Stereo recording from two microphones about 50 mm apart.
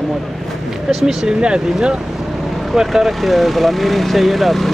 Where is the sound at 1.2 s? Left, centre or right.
Centre.